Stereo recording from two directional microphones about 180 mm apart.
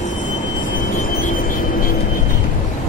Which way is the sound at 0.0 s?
45° left (ahead or behind).